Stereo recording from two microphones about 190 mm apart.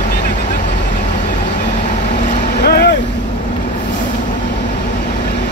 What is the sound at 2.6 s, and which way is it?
Vehicle, 55° left (ahead or behind).